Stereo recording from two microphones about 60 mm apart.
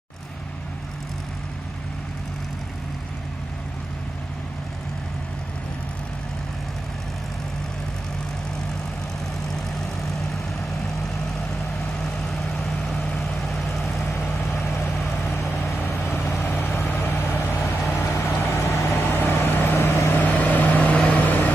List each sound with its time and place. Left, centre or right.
10.0 s vehicle: centre
12.0 s vehicle: centre
14.1 s vehicle: left
15.8 s vehicle: left
17.6 s vehicle: left
20.2 s vehicle: left